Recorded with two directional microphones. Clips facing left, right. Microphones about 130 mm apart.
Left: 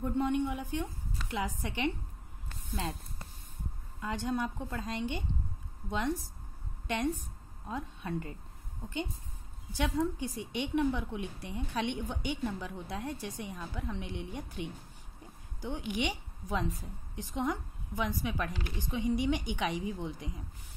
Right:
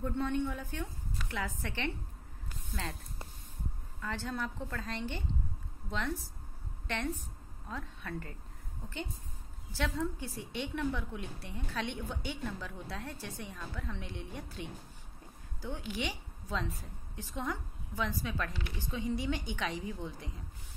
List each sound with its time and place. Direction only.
0.0 s a woman's voice: 15° left (ahead or behind)
4.0 s a woman's voice: 15° left (ahead or behind)
7.6 s a woman's voice: 20° left (ahead or behind)
9.7 s a woman's voice: 15° left (ahead or behind)